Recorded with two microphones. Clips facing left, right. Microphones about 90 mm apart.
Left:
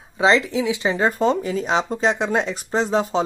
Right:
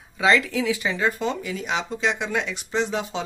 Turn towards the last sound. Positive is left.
turn(degrees=35)  # may be behind; listen again after turning